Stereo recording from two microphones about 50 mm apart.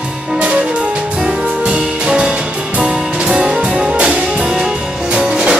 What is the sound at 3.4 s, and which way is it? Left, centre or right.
Music, centre.